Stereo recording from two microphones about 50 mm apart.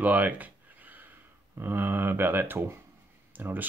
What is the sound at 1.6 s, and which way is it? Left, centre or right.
Speech, right.